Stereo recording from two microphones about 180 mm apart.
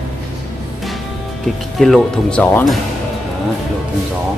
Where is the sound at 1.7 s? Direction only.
Centre (ahead or behind).